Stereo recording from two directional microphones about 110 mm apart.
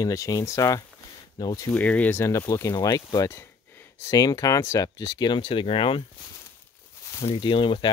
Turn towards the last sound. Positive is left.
turn(degrees=50)  # may be behind; listen again after turning